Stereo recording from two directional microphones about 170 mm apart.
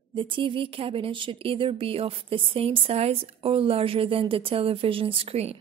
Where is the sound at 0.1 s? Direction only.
30° right (ahead or behind).